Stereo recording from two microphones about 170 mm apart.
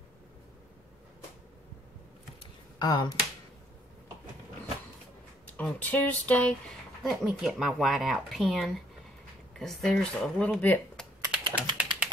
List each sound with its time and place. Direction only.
2.8 s speech: 25° left (ahead or behind)
5.5 s speech: 10° left (ahead or behind)
7.0 s speech: centre (ahead or behind)
11.5 s ratchet: 10° right (ahead or behind)